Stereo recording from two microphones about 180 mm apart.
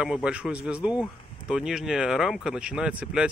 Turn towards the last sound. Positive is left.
turn(degrees=-5)  # may be behind; listen again after turning